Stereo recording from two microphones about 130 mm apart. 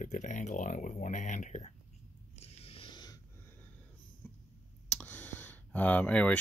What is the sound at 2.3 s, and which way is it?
Biting, 50° left (ahead or behind).